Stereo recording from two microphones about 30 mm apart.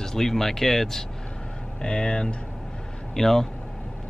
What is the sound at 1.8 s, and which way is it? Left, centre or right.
Speech, left.